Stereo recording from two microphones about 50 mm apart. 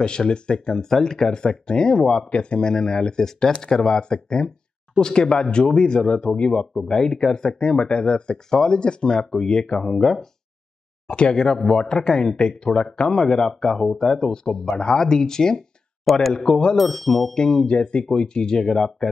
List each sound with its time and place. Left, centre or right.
0.0 s speech: centre
16.1 s speech: centre
16.3 s speech: centre